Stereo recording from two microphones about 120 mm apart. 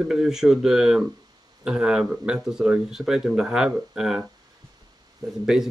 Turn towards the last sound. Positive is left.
turn(degrees=-5)  # may be behind; listen again after turning